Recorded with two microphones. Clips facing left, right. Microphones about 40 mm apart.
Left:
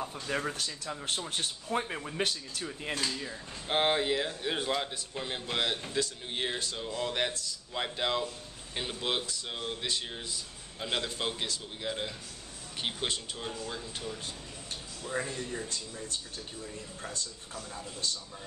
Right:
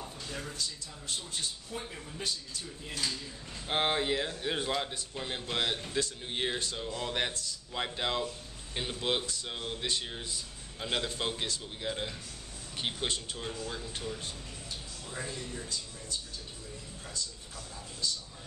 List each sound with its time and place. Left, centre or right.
0.4 s speech: left
1.7 s speech: left
2.0 s speech: left
3.6 s speech: centre
15.0 s a man's voice: left
18.0 s a man's voice: left